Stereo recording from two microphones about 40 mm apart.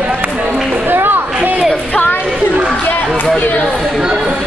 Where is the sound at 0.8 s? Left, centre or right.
Right.